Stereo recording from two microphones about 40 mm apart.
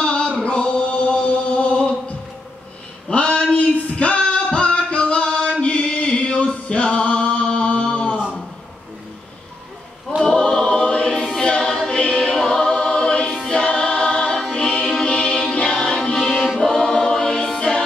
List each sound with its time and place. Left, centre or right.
0.0 s chant: left
3.1 s a sound: left
4.5 s music: left
10.2 s choir: centre
11.9 s music: left
12.4 s choir: centre
14.5 s music: left
16.5 s choir: centre